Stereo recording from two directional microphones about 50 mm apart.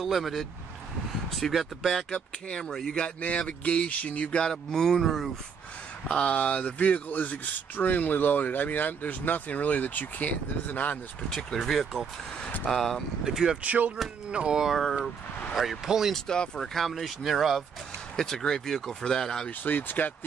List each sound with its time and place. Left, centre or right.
0.0 s speech: centre
2.0 s speech: centre
3.2 s speech: left
4.5 s speech: centre
6.0 s speech: left
11.2 s speech: centre
12.4 s vehicle: left
12.6 s speech: centre
13.2 s speech: centre
13.6 s speech: right
14.6 s speech: centre
16.5 s speech: centre
18.1 s speech: centre
19.6 s speech: left